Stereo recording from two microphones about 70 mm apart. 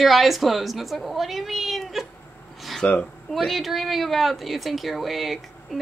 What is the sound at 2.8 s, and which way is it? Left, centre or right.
Speech, centre.